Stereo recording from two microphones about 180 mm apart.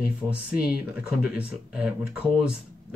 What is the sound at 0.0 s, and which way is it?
Speech, 5° right (ahead or behind).